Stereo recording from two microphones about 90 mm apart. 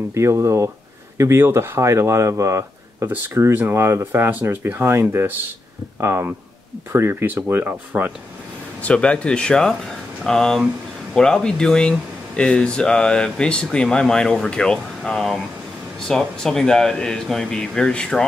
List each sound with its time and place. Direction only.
0.1 s speech: 30° right (ahead or behind)
7.9 s speech: 15° right (ahead or behind)
8.8 s speech: 10° left (ahead or behind)